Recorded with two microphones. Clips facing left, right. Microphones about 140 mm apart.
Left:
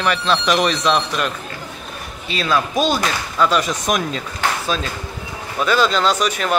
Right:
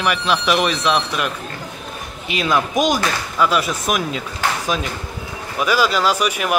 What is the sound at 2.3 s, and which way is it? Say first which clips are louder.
Speech: even; 15° right (ahead or behind).